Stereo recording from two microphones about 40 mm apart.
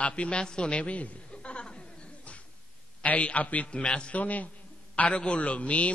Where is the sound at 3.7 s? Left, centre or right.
Left.